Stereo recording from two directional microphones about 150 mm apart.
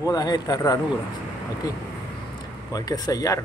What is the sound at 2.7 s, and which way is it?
Speech, 25° left (ahead or behind).